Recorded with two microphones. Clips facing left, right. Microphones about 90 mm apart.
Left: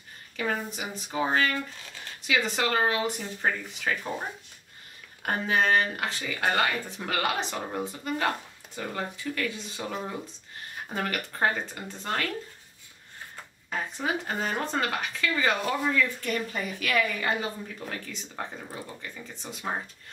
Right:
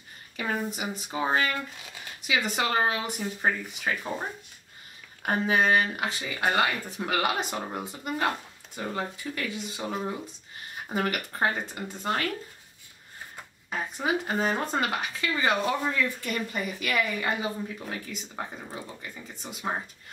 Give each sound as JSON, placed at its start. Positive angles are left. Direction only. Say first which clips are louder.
{"t": 0.4, "sound": "a woman's voice", "louder": "even", "side_deg": -10}
{"t": 5.2, "sound": "a woman's voice", "louder": "right 1 dB", "side_deg": -10}
{"t": 13.7, "sound": "a woman's voice", "louder": "right 1 dB", "side_deg": -10}